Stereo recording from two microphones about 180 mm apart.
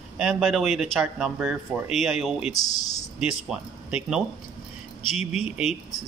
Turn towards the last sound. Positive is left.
turn(degrees=-5)  # may be behind; listen again after turning